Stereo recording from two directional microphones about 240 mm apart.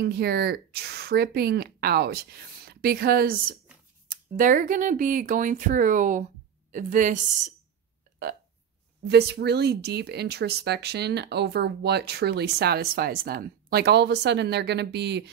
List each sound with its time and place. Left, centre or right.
0.0 s speech: right
9.1 s speech: right